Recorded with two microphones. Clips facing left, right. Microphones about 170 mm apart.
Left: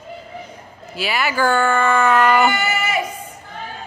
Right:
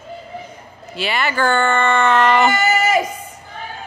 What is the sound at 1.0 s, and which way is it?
Speech, 5° left (ahead or behind).